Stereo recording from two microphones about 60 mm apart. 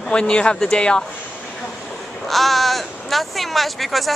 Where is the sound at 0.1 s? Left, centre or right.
Centre.